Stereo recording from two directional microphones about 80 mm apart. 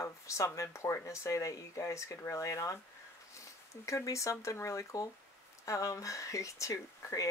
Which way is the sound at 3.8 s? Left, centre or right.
Left.